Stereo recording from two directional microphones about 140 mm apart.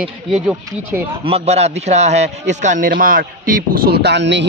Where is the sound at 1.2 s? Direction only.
45° right (ahead or behind); by 3.9 s 85° right.